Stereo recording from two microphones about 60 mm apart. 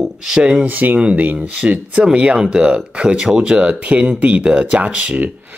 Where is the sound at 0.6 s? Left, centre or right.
Right.